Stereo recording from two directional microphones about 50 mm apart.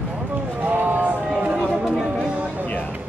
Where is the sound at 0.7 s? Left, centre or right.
Right.